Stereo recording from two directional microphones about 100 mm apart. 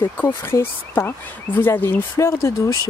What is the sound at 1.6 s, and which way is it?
Speech, 20° left (ahead or behind).